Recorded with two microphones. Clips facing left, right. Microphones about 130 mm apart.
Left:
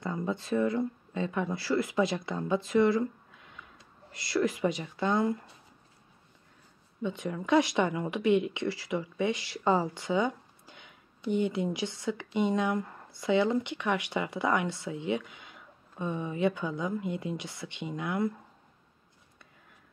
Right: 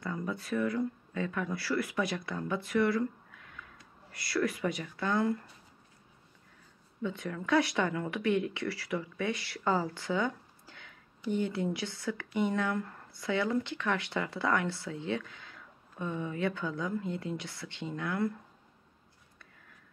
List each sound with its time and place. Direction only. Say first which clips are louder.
0.0 s speech: left 3 dB; 25° left (ahead or behind)
7.0 s speech: left 2 dB; 20° left (ahead or behind)